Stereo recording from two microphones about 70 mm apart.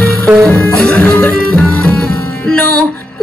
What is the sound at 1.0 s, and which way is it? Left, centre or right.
Music, centre.